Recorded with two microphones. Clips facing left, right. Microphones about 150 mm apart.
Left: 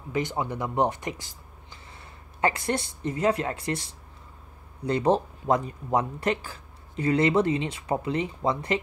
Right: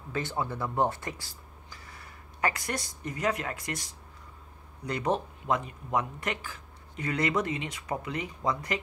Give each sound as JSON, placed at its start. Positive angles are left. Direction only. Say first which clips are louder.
{"t": 0.1, "sound": "speech", "louder": "left 4 dB", "side_deg": 15}